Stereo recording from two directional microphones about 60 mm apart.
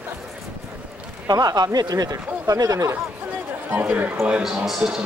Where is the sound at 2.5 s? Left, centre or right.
Right.